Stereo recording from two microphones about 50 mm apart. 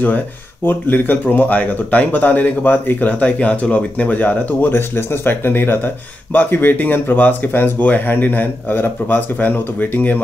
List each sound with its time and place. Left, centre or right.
0.7 s speech: left